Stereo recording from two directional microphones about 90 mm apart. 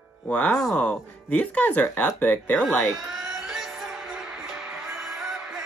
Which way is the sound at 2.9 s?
5° right (ahead or behind).